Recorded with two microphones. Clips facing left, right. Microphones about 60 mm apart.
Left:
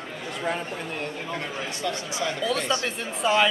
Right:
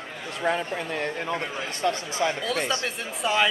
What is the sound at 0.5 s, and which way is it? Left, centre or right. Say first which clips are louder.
Speech: right 3 dB; right.